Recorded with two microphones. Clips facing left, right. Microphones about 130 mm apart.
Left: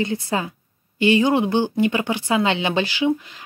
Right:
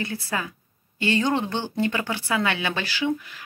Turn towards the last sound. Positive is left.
turn(degrees=20)  # may be behind; listen again after turning